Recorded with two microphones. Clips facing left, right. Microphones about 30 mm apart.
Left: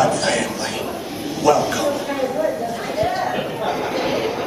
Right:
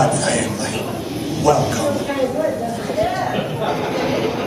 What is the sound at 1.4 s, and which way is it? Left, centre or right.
Speech, centre.